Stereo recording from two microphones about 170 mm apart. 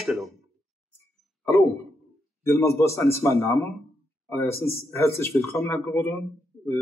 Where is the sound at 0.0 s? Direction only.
Centre (ahead or behind).